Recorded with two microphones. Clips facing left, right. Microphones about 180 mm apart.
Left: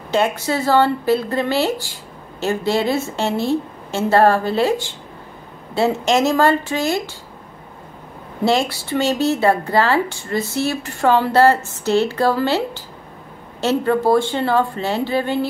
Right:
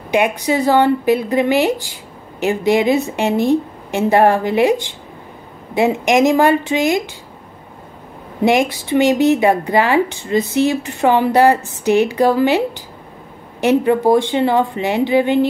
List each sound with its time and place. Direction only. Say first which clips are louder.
0.1 s a woman's voice: right 3 dB; 15° right (ahead or behind)
8.5 s a woman's voice: right 3 dB; 15° right (ahead or behind)